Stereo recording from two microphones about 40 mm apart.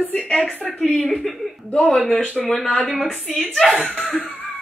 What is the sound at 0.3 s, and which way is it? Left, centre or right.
Speech, left.